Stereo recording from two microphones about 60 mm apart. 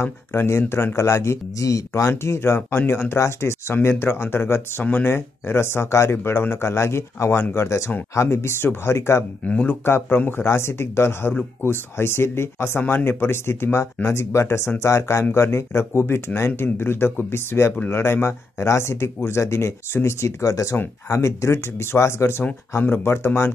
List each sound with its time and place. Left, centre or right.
0.0 s speech: left
2.3 s speech: left
6.1 s speech: left
10.0 s speech: left